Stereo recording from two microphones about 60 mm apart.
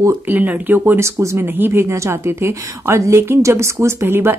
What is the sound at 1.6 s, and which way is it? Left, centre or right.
A woman's voice, right.